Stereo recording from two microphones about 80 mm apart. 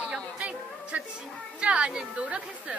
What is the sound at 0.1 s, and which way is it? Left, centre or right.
Chatter, centre.